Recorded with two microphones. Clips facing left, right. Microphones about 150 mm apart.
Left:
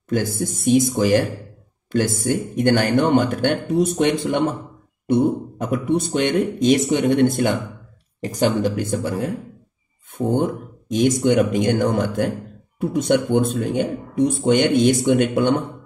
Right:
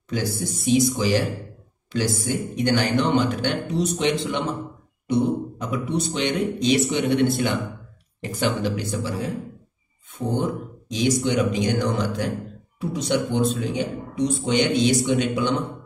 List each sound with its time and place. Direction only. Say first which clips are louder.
0.1 s speech: left 4 dB; 50° left (ahead or behind)